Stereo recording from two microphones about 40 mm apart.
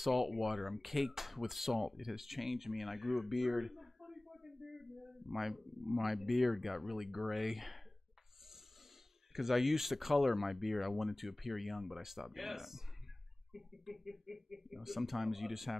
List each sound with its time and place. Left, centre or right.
0.0 s speech: centre
9.3 s speech: centre